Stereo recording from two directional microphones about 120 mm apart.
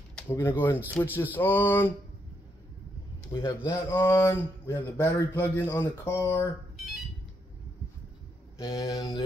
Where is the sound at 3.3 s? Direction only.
35° left (ahead or behind).